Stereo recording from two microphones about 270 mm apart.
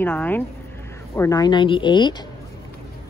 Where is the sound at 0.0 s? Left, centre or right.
Centre.